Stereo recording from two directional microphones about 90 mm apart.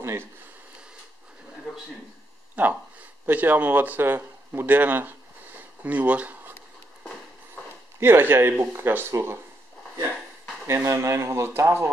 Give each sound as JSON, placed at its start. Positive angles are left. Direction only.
{"t": 0.0, "sound": "speech", "side_deg": -30}
{"t": 2.5, "sound": "speech", "side_deg": -20}
{"t": 5.6, "sound": "a sound", "side_deg": -20}
{"t": 8.0, "sound": "speech", "side_deg": -25}
{"t": 10.7, "sound": "speech", "side_deg": -30}